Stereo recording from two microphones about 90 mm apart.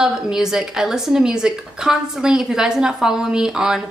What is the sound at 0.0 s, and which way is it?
Speech, 5° right (ahead or behind).